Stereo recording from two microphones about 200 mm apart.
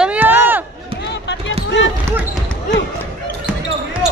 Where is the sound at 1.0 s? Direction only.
60° left (ahead or behind).